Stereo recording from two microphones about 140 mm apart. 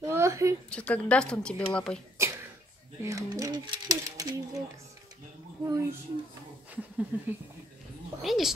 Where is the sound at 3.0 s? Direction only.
20° right (ahead or behind).